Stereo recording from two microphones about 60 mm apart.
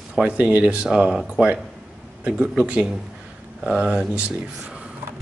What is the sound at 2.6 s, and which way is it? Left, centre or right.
Speech, right.